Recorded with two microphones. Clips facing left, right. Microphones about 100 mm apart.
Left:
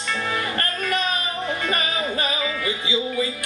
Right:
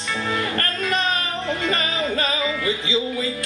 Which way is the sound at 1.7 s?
15° left (ahead or behind).